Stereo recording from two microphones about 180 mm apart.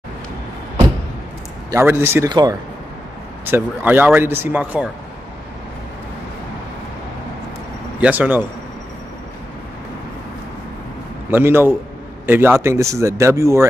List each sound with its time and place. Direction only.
1.7 s speech: 15° right (ahead or behind)
3.4 s speech: 10° right (ahead or behind)
8.0 s speech: 10° right (ahead or behind)
11.2 s speech: 10° right (ahead or behind)